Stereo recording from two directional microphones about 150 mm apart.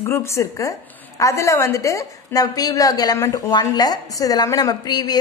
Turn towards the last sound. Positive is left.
turn(degrees=25)  # may be behind; listen again after turning